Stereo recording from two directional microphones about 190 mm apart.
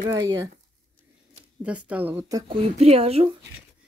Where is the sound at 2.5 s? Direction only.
30° right (ahead or behind).